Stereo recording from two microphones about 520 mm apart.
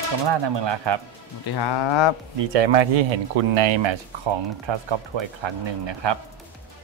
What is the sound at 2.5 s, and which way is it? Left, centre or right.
Speech, right.